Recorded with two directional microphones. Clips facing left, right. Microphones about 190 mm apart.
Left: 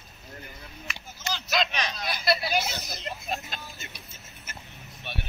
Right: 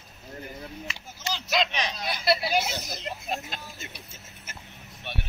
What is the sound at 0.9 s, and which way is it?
Speech, 30° right (ahead or behind).